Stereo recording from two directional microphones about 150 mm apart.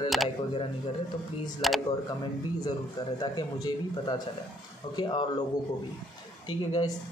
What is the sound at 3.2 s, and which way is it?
Speech, 30° left (ahead or behind).